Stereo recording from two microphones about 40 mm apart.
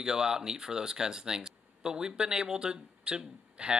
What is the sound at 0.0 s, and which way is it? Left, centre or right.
Speech, centre.